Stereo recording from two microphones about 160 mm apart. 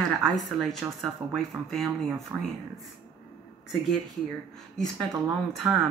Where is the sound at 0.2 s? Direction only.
5° left (ahead or behind).